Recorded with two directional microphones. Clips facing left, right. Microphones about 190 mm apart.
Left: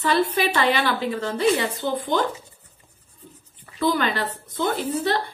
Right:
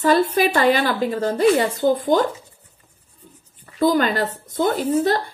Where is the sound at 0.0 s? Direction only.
45° right (ahead or behind).